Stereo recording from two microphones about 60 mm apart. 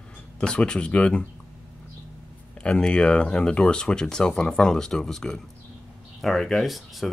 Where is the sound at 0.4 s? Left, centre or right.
Centre.